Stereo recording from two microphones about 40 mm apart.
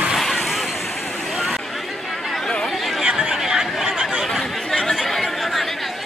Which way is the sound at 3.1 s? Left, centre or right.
Centre.